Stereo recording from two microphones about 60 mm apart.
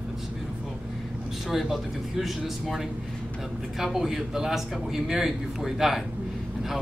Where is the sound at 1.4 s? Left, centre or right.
Centre.